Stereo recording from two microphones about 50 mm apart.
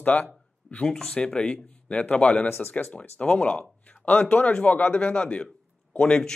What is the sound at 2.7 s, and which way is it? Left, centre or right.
A man's voice, left.